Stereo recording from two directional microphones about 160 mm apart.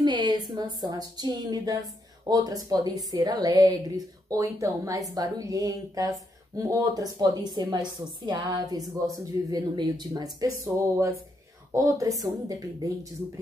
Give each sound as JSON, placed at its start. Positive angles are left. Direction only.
{"t": 0.0, "sound": "a woman's voice", "side_deg": -25}